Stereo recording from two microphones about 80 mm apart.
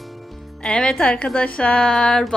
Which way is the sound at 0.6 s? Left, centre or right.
Centre.